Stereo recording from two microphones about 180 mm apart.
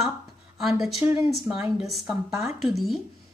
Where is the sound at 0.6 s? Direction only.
Centre (ahead or behind).